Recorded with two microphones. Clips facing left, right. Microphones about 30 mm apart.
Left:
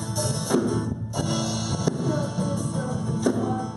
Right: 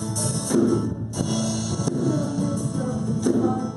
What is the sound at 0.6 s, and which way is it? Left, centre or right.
Music, centre.